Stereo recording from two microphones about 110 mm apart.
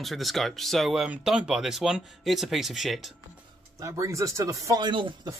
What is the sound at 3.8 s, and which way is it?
Speech, 30° right (ahead or behind).